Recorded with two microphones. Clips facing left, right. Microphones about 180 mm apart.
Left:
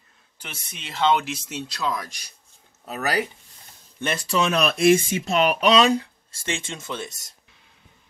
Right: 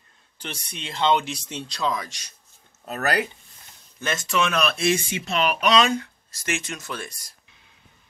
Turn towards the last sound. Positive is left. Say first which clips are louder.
# left 2 dB
turn(degrees=20)  # may be behind; listen again after turning